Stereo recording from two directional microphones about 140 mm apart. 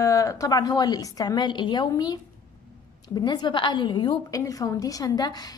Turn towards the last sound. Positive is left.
turn(degrees=30)  # may be behind; listen again after turning